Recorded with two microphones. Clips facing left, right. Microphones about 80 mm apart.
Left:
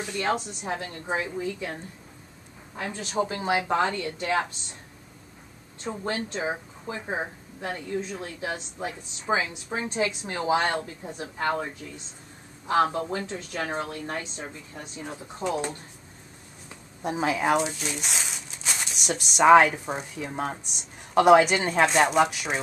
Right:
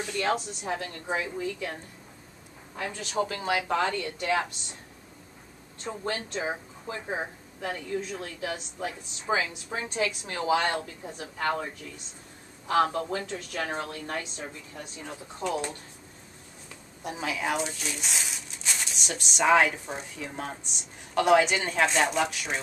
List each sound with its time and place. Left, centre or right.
0.2 s a woman's voice: left
6.0 s a woman's voice: left
6.4 s a woman's voice: centre
12.9 s a woman's voice: left
17.0 s speech: left
17.6 s speech: centre